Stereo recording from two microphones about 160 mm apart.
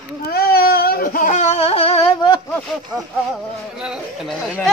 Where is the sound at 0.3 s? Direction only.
70° left (ahead or behind); by 2.4 s 30° left (ahead or behind).